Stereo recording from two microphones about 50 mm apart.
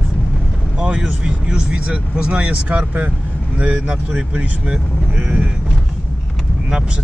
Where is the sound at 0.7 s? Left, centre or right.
Centre.